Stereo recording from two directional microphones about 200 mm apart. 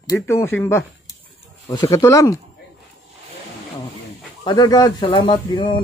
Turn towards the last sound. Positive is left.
turn(degrees=25)  # may be behind; listen again after turning